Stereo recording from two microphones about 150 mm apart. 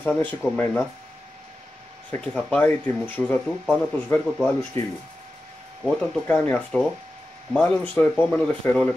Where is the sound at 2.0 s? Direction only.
10° left (ahead or behind).